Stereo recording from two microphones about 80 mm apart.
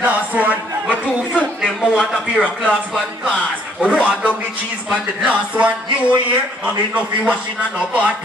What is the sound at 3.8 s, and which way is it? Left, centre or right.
Speech, centre.